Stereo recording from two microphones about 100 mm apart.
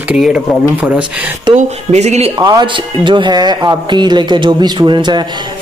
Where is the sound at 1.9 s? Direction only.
90° right.